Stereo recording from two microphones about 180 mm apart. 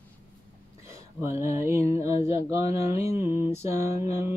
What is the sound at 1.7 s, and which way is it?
Music, 15° right (ahead or behind).